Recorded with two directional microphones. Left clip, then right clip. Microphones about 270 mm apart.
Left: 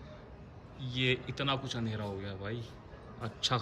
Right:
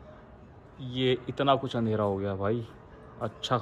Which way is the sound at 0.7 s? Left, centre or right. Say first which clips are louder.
Right 4 dB; centre.